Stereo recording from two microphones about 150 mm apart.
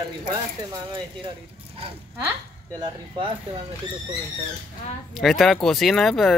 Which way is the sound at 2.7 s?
30° right (ahead or behind).